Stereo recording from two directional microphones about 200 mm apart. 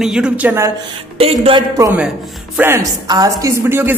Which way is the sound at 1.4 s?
25° right (ahead or behind).